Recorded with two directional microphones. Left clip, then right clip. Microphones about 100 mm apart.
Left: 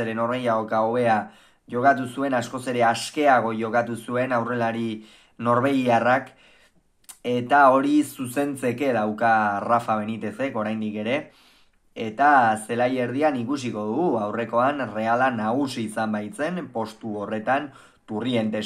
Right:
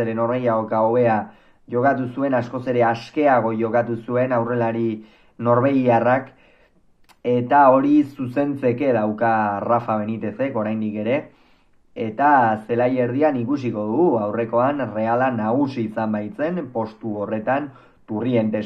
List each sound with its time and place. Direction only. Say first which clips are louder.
0.0 s speech: right 4 dB; 20° left (ahead or behind)